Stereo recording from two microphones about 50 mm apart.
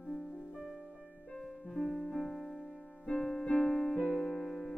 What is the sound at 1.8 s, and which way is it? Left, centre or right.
Music, centre.